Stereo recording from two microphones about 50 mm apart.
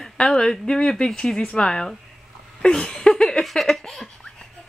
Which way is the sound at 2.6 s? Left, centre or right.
Centre.